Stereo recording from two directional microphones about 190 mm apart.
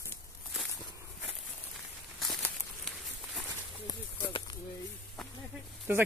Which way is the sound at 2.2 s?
Centre (ahead or behind).